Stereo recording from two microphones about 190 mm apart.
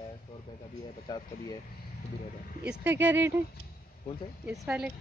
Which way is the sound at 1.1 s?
25° left (ahead or behind).